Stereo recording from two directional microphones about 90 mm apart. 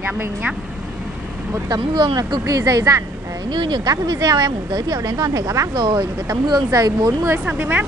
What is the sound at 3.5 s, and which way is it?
Speech, 55° right (ahead or behind).